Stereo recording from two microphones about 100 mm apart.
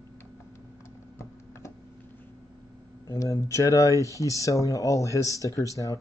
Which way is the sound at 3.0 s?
35° left (ahead or behind).